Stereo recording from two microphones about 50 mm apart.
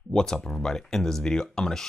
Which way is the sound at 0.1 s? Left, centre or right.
Centre.